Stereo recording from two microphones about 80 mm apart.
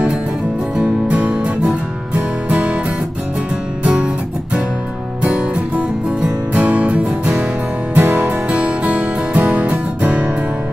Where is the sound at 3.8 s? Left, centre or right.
Centre.